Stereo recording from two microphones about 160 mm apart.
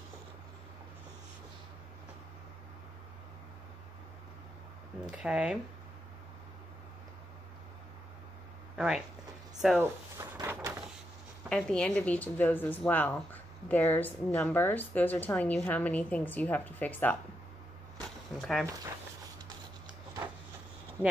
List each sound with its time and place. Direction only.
5.1 s speech: 5° right (ahead or behind)
8.7 s speech: 5° right (ahead or behind)
10.1 s a sound: 15° right (ahead or behind)
11.4 s a woman's voice: 5° left (ahead or behind)
18.4 s speech: 5° left (ahead or behind)